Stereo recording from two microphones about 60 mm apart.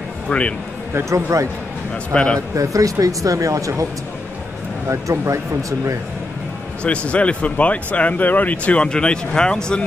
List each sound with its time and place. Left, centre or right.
0.3 s speech: centre
0.9 s speech: right
2.1 s speech: centre
2.5 s speech: right
4.8 s speech: right
6.8 s speech: centre